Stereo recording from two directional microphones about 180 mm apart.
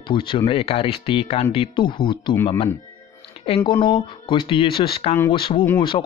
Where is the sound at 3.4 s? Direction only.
30° left (ahead or behind).